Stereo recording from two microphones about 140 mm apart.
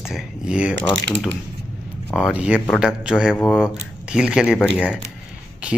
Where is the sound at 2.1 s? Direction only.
5° right (ahead or behind).